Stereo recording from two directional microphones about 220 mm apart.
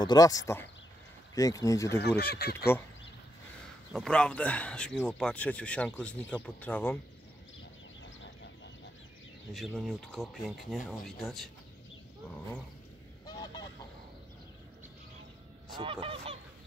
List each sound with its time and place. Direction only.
0.0 s speech: 15° left (ahead or behind)
2.0 s speech: 45° left (ahead or behind)
3.9 s speech: 5° left (ahead or behind)
9.5 s speech: centre (ahead or behind)
13.2 s goose: 20° left (ahead or behind)
15.8 s speech: 25° right (ahead or behind)